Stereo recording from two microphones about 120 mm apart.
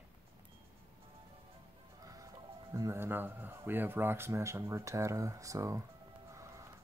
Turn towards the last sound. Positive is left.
turn(degrees=-25)  # may be behind; listen again after turning